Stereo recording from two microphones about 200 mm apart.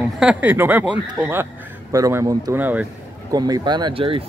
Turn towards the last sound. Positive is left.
turn(degrees=-25)  # may be behind; listen again after turning